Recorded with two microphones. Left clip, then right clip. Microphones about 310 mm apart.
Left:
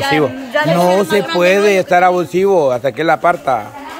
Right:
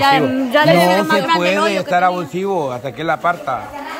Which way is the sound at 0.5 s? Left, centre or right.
Centre.